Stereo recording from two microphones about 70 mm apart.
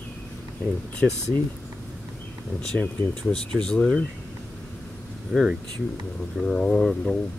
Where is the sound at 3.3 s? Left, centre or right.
Centre.